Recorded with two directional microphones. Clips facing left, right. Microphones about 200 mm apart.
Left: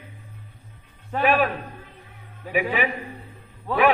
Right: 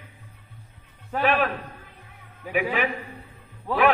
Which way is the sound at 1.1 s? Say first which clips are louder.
Left 2 dB; 5° left (ahead or behind).